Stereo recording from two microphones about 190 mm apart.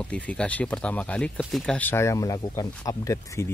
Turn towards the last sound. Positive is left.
turn(degrees=20)  # may be behind; listen again after turning